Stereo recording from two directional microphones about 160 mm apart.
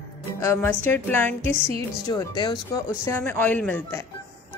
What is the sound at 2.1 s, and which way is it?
Speech, 25° left (ahead or behind).